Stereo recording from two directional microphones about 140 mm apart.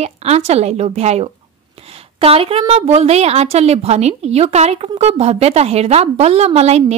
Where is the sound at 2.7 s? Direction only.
45° right (ahead or behind).